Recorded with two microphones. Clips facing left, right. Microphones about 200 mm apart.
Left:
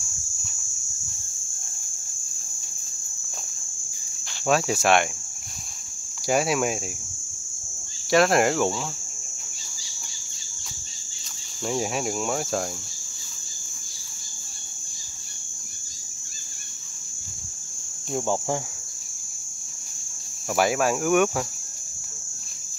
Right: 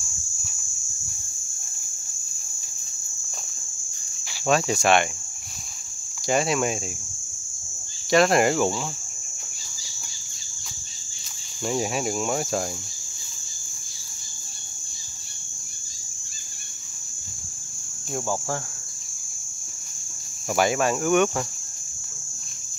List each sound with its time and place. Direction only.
4.5 s speech: 5° left (ahead or behind)
6.2 s speech: 5° left (ahead or behind)
8.1 s speech: centre (ahead or behind)
11.6 s speech: centre (ahead or behind)
18.2 s cricket: 20° left (ahead or behind)
20.5 s speech: 5° left (ahead or behind)